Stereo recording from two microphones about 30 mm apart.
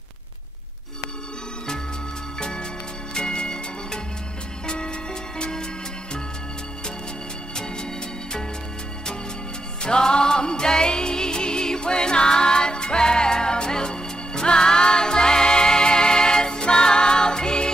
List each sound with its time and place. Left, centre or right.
3.2 s music: left
9.8 s music: left